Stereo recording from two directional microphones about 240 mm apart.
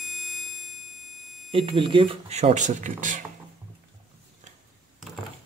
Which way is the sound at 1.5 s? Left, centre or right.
Right.